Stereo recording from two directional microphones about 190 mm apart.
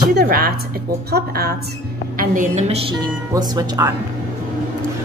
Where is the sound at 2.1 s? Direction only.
40° right (ahead or behind).